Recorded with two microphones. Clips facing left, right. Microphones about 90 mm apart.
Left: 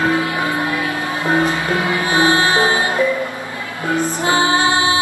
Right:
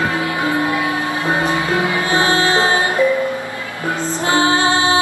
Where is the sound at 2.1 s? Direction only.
20° left (ahead or behind).